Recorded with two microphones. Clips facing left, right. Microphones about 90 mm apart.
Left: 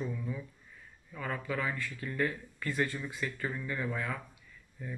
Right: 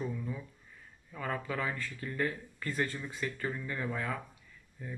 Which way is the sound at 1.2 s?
40° right (ahead or behind).